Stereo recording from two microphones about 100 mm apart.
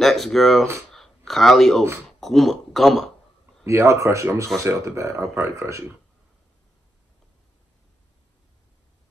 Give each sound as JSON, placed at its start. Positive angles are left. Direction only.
{"t": 0.0, "sound": "speech", "side_deg": 0}
{"t": 0.9, "sound": "a sound", "side_deg": 0}
{"t": 2.0, "sound": "speech", "side_deg": 0}
{"t": 3.6, "sound": "speech", "side_deg": -30}